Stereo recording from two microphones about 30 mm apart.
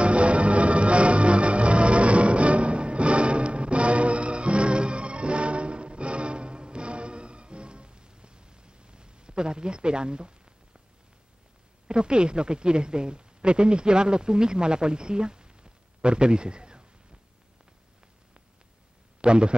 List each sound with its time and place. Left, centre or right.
0.0 s music: right
11.9 s a woman's voice: right
19.2 s a man's voice: right